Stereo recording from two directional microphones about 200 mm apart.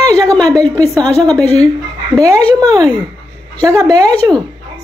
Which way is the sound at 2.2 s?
15° right (ahead or behind).